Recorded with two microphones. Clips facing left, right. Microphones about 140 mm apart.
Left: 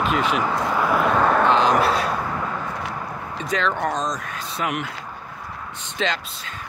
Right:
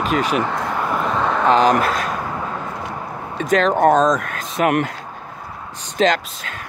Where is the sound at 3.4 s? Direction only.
45° right (ahead or behind).